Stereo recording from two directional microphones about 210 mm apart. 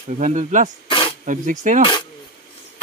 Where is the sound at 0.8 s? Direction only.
25° left (ahead or behind).